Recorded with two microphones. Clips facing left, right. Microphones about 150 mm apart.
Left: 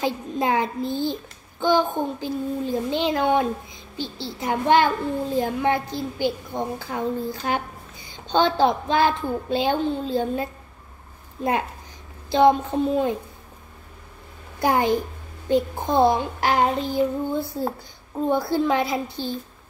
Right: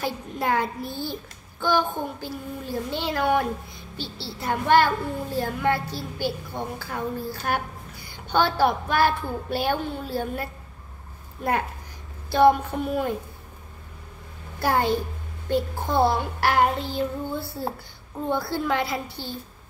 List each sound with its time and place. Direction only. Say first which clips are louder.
0.0 s a child's voice: left 4 dB; 20° left (ahead or behind)
12.3 s a child's voice: left 1 dB; 20° left (ahead or behind)
14.6 s a child's voice: left 2 dB; 20° left (ahead or behind)